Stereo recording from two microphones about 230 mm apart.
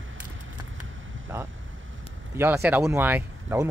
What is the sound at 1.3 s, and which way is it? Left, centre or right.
Speech, centre.